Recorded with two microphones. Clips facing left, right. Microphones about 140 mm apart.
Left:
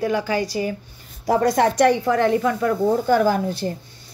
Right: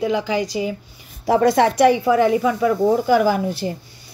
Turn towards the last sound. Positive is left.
turn(degrees=-5)  # may be behind; listen again after turning